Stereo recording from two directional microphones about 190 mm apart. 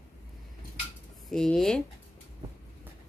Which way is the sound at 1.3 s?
5° left (ahead or behind).